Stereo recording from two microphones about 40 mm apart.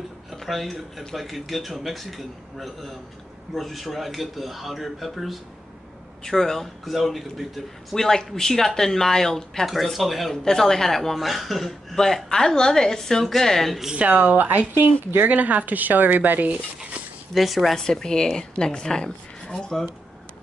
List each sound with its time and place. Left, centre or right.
0.3 s speech: centre
6.2 s speech: centre
7.9 s speech: centre
9.9 s speech: centre
10.3 s speech: centre
12.3 s speech: centre
13.9 s speech: right
15.2 s speech: right
17.3 s speech: centre
17.7 s speech: centre